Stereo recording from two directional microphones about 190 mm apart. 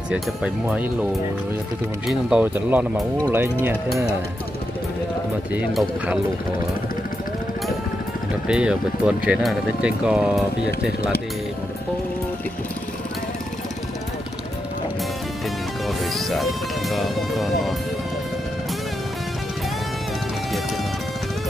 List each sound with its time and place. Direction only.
0.1 s speech: 5° right (ahead or behind)
2.0 s speech: 5° right (ahead or behind)
5.6 s speech: 5° right (ahead or behind)
8.5 s speech: 5° right (ahead or behind)
16.2 s speech: centre (ahead or behind)